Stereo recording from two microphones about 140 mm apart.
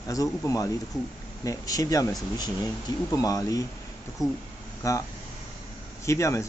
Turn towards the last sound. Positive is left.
turn(degrees=20)  # may be behind; listen again after turning